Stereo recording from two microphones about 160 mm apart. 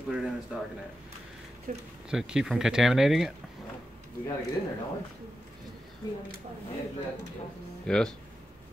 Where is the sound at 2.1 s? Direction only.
5° right (ahead or behind).